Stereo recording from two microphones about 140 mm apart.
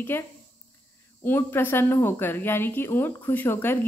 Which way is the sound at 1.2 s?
15° left (ahead or behind).